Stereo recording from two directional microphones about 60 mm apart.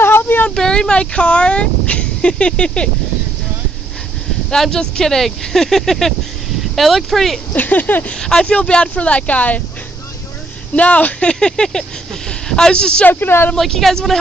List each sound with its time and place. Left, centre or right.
0.0 s a sound: left
0.6 s speech: centre
4.5 s speech: centre
7.5 s speech: left
8.2 s speech: centre
10.7 s speech: left
13.1 s speech: left
13.6 s speech: centre